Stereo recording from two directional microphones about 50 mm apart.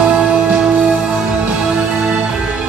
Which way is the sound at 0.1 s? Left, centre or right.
Centre.